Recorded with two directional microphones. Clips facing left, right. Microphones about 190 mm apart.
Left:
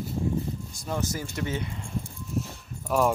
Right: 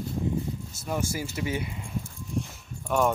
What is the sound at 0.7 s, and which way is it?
Speech, 5° right (ahead or behind).